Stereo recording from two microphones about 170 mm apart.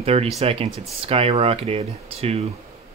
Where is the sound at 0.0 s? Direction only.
35° right (ahead or behind).